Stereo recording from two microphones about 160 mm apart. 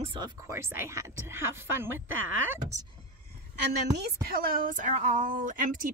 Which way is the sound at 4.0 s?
70° right (ahead or behind).